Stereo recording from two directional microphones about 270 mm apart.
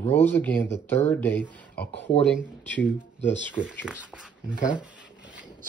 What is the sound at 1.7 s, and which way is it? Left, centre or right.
Speech, left.